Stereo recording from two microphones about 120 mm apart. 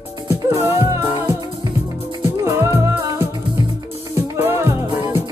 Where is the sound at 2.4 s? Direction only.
25° right (ahead or behind).